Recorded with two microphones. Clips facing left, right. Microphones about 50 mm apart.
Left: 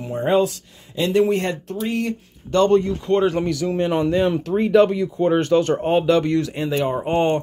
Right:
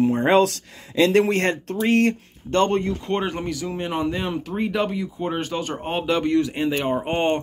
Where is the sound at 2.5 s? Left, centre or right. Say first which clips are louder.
Left 4 dB; right.